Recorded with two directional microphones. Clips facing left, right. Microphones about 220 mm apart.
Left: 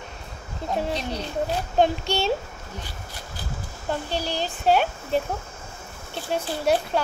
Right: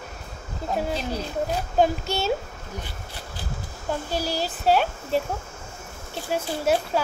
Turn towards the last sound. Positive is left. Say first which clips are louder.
# even
turn(degrees=-5)  # may be behind; listen again after turning